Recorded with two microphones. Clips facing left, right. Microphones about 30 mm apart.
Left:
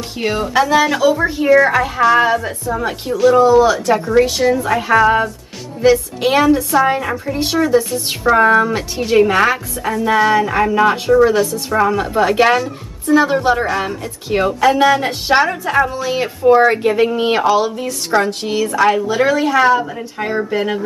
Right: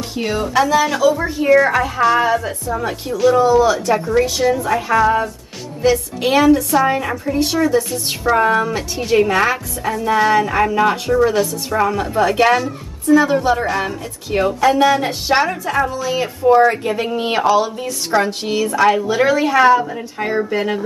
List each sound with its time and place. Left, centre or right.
0.1 s speech: centre
5.8 s a woman's voice: centre
8.9 s a woman's voice: centre
13.7 s a woman's voice: centre